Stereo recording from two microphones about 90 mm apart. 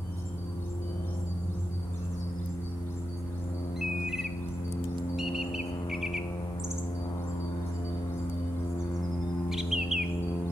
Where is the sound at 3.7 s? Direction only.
5° right (ahead or behind).